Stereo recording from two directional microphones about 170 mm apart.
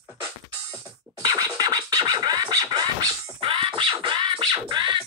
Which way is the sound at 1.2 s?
20° right (ahead or behind).